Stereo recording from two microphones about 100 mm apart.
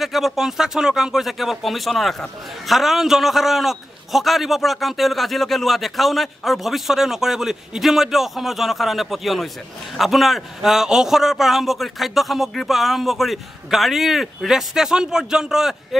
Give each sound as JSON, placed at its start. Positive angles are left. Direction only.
{"t": 0.0, "sound": "a man's voice", "side_deg": 0}